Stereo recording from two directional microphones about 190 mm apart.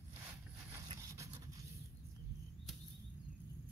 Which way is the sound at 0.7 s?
20° right (ahead or behind).